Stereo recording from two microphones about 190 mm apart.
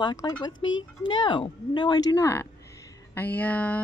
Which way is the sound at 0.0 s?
20° left (ahead or behind).